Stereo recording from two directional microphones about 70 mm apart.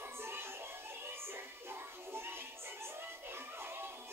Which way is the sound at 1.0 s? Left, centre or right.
Right.